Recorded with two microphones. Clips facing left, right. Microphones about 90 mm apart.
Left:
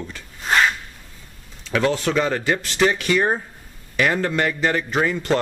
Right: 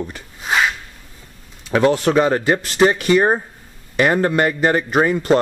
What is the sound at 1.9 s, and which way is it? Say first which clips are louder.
Speech: right 5 dB; 20° right (ahead or behind).